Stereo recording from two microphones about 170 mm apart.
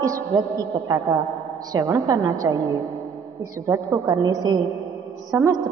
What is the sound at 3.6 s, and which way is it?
A woman's voice, 15° right (ahead or behind).